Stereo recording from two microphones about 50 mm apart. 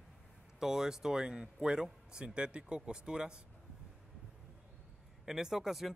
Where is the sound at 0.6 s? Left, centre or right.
Centre.